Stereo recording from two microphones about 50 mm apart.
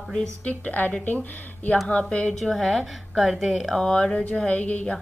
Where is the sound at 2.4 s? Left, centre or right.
Centre.